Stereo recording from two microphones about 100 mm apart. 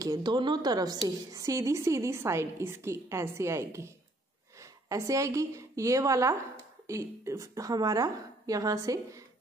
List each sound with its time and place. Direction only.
0.0 s a woman's voice: 45° right (ahead or behind)